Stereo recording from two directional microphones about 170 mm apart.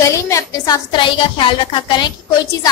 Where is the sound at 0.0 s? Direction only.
20° left (ahead or behind).